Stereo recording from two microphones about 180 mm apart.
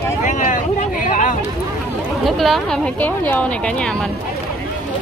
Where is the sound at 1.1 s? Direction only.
45° left (ahead or behind).